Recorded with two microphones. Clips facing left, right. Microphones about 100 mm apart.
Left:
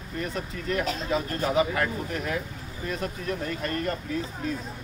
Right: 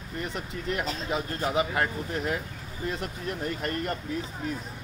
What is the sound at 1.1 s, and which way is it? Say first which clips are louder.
Speech: left 1 dB; 25° right (ahead or behind).